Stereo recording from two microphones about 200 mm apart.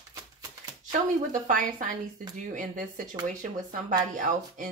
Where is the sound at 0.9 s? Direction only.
40° right (ahead or behind).